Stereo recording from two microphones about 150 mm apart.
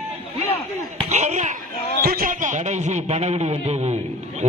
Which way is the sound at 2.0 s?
75° right (ahead or behind).